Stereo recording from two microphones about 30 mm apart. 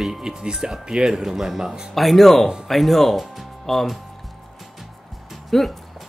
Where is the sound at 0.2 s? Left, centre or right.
Right.